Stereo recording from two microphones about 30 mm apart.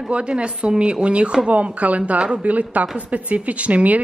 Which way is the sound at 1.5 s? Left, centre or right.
Right.